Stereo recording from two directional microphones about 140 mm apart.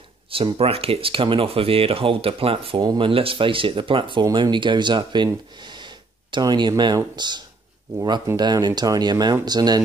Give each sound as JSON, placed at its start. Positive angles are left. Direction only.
{"t": 0.6, "sound": "speech", "side_deg": -45}